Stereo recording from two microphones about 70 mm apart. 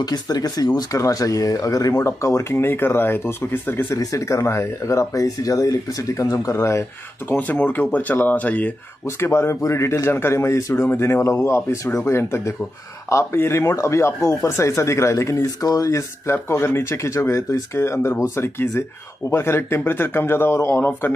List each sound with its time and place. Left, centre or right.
0.0 s speech: left
2.0 s speech: left
3.9 s speech: left
7.2 s speech: left
9.0 s speech: left
12.0 s speech: left
15.4 s speech: left
16.3 s speech: left